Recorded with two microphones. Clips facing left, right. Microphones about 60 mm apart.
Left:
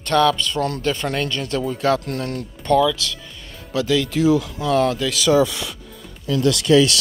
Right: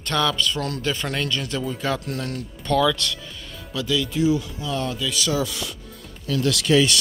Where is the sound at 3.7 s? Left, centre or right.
Left.